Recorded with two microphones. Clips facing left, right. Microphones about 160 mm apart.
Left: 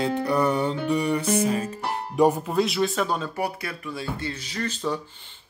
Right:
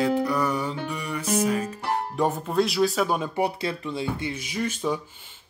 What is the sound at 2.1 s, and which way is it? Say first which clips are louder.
Speech: left 8 dB; 15° left (ahead or behind).